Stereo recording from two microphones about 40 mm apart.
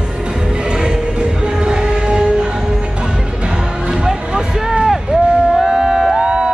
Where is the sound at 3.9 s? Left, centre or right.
Centre.